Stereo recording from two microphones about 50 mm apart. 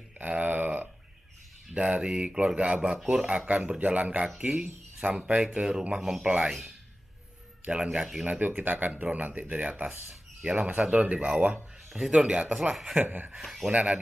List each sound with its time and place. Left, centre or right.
0.2 s a sound: right
1.7 s speech: right
7.6 s speech: right
8.2 s speech: right
11.9 s speech: centre
12.7 s speech: centre
13.0 s speech: right
13.4 s speech: centre
13.7 s speech: right